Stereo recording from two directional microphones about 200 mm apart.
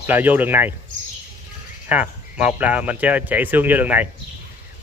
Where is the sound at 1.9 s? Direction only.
5° right (ahead or behind).